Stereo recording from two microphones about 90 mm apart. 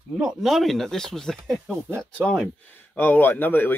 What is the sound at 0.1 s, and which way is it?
Speech, 5° right (ahead or behind).